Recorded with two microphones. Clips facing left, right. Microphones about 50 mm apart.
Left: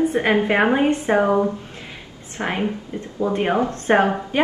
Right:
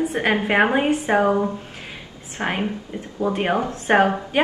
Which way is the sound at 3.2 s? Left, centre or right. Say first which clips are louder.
Left 1 dB; right.